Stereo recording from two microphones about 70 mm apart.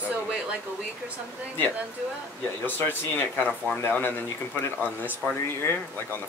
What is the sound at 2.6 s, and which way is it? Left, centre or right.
Speech, left.